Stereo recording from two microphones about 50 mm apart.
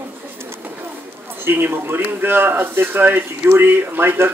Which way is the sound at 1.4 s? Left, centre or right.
Right.